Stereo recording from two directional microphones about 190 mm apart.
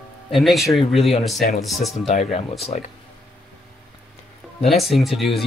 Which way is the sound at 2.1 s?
35° left (ahead or behind).